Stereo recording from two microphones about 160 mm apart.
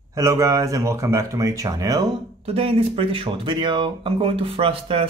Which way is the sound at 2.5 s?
40° right (ahead or behind).